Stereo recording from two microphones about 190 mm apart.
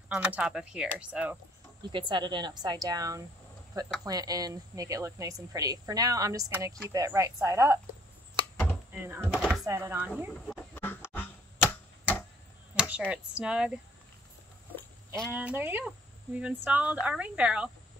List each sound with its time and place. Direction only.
0.1 s speech: 5° right (ahead or behind)
1.8 s speech: 25° right (ahead or behind)
8.9 s speech: 10° right (ahead or behind)
9.4 s a sound: centre (ahead or behind)
9.7 s speech: 10° right (ahead or behind)
10.5 s typewriter: 10° left (ahead or behind)
13.1 s speech: 5° right (ahead or behind)
14.8 s a sound: 5° left (ahead or behind)
15.3 s speech: 10° right (ahead or behind)